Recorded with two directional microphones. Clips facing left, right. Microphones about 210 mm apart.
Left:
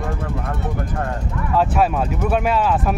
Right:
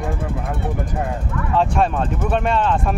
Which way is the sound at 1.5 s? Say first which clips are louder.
Left 1 dB; 5° left (ahead or behind).